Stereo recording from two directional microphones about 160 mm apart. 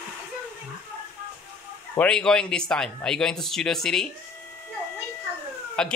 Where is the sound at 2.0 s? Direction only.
5° left (ahead or behind).